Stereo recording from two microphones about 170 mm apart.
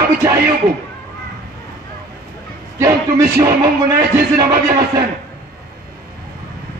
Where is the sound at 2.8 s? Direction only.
20° right (ahead or behind).